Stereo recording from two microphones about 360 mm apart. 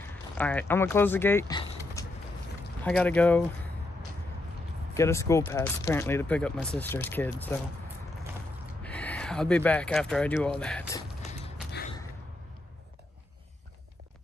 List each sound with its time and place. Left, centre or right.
0.0 s speech: centre
4.9 s speech: centre
8.8 s speech: centre
11.2 s creak: centre